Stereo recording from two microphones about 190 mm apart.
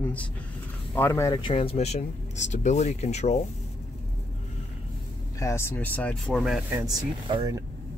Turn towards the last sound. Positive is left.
turn(degrees=-20)  # may be behind; listen again after turning